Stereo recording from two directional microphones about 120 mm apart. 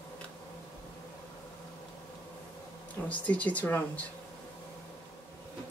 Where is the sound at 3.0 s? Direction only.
10° left (ahead or behind).